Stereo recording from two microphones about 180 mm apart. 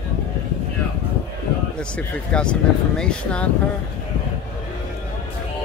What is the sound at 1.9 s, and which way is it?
Speech, 5° left (ahead or behind).